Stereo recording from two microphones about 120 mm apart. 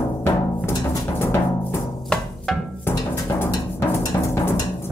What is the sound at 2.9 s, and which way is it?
Music, 20° left (ahead or behind).